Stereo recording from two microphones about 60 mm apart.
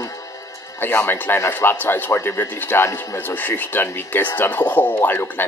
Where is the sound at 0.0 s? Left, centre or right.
Left.